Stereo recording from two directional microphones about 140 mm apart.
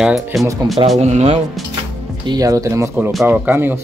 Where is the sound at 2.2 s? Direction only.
25° right (ahead or behind).